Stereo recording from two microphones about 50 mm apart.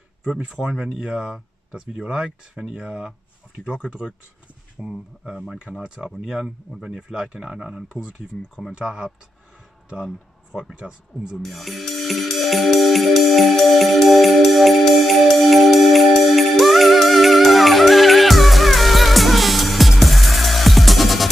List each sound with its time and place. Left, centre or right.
0.7 s speech: centre
4.7 s speech: centre
10.6 s speech: centre
11.3 s music: centre